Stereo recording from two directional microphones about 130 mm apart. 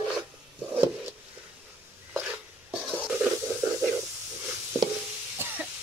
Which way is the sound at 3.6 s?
30° right (ahead or behind).